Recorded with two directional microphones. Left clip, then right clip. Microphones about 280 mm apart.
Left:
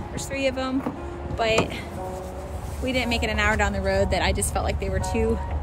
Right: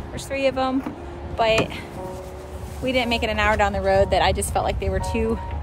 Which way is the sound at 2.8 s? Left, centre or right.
Centre.